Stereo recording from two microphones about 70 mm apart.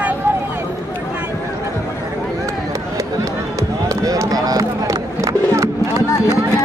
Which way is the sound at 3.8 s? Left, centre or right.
Right.